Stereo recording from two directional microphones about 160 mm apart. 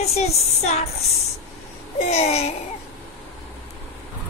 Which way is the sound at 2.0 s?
40° left (ahead or behind).